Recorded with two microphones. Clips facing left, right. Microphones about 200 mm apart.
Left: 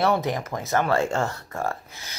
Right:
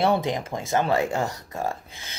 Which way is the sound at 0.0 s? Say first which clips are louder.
Even; 25° right (ahead or behind).